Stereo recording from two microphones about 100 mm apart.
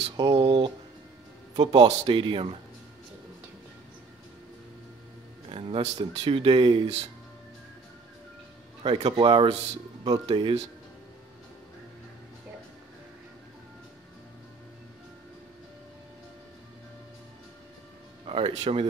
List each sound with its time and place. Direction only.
0.2 s speech: 45° right (ahead or behind)
5.5 s speech: 70° right (ahead or behind)
6.1 s speech: 60° right (ahead or behind)
8.8 s speech: 55° right (ahead or behind)
18.2 s speech: 60° right (ahead or behind)